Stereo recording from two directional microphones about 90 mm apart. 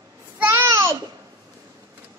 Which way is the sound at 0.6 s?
35° right (ahead or behind).